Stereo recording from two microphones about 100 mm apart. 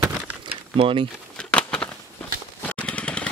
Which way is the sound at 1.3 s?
10° left (ahead or behind).